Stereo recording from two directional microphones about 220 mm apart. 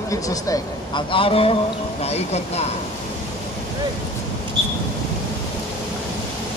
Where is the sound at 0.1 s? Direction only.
15° left (ahead or behind).